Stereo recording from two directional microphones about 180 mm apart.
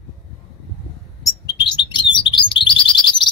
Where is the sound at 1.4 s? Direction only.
25° left (ahead or behind).